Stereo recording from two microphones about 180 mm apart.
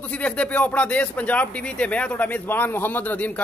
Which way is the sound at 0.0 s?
5° left (ahead or behind).